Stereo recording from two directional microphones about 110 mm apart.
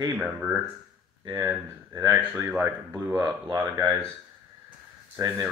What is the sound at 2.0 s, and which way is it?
Speech, 30° right (ahead or behind).